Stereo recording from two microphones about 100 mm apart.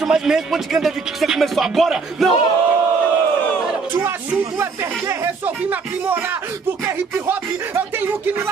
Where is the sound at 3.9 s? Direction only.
20° right (ahead or behind).